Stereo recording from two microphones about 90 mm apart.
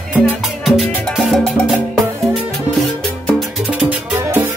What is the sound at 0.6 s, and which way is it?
Music, centre (ahead or behind).